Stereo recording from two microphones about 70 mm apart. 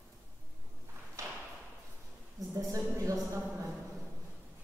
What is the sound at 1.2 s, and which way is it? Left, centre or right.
Thump, right.